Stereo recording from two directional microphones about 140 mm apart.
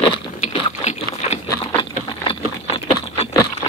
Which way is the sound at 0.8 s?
55° left (ahead or behind).